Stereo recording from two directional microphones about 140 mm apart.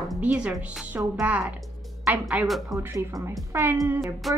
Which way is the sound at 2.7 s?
20° right (ahead or behind).